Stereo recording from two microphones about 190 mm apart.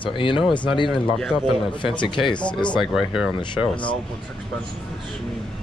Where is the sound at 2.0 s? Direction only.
25° left (ahead or behind).